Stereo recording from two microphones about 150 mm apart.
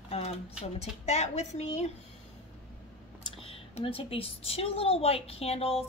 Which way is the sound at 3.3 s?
40° left (ahead or behind).